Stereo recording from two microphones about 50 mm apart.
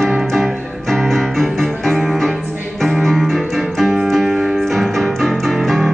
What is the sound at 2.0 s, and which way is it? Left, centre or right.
Music, centre.